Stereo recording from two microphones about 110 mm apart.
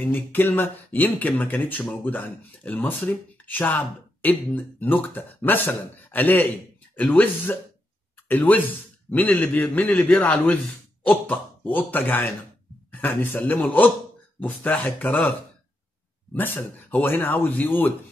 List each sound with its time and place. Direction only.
0.0 s speech: 15° left (ahead or behind)
16.3 s speech: 15° left (ahead or behind)